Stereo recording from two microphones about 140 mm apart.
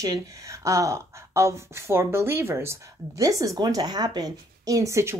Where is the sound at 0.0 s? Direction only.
25° right (ahead or behind).